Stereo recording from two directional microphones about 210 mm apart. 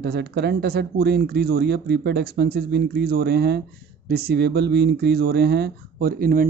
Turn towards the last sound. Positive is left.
turn(degrees=-45)  # may be behind; listen again after turning